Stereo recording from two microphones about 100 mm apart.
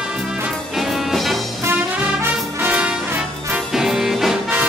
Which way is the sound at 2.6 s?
15° right (ahead or behind).